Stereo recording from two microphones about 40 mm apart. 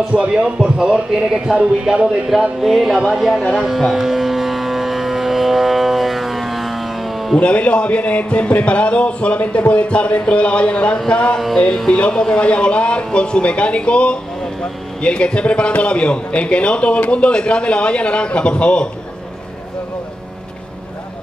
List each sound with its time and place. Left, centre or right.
0.1 s speech: right; by 3.4 s centre
3.6 s vehicle: centre
7.3 s a man's voice: left
11.1 s music: left
11.3 s music: centre
11.9 s a man's voice: left